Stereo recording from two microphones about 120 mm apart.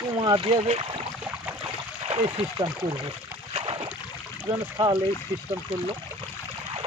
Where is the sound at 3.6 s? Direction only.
50° right (ahead or behind).